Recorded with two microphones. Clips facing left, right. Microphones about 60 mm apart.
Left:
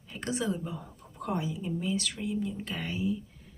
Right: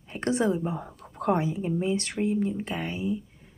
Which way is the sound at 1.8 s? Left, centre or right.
Right.